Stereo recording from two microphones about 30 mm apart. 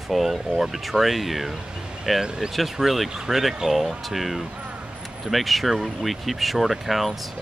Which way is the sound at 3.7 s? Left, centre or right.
Centre.